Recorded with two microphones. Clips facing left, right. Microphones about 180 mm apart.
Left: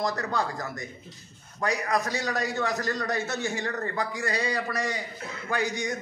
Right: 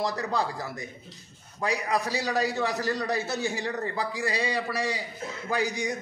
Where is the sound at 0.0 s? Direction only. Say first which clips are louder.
Even; 10° right (ahead or behind).